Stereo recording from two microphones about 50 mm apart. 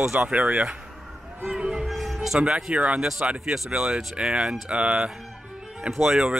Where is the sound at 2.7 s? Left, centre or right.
Right.